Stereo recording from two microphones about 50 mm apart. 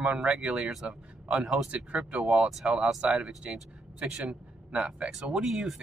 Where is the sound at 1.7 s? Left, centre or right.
Right.